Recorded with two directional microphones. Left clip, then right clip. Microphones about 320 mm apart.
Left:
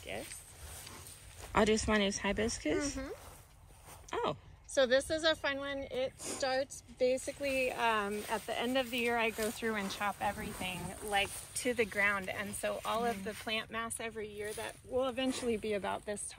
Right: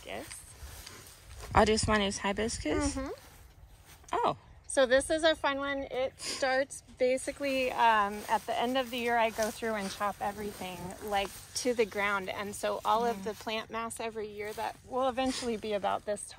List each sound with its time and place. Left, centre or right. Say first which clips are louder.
1.5 s speech: right 4 dB; centre
2.8 s speech: right 5 dB; right
4.1 s a sound: right 6 dB; centre
4.7 s speech: right 4 dB; right